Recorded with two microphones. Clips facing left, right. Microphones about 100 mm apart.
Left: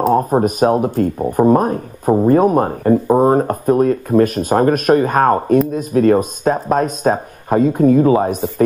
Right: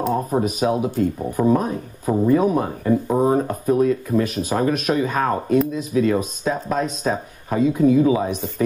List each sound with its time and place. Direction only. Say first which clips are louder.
0.1 s speech: left 7 dB; 50° left (ahead or behind)